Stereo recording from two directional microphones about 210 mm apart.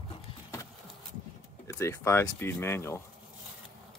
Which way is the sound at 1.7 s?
15° left (ahead or behind).